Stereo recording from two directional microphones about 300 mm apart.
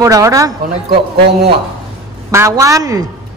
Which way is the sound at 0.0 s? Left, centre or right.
Centre.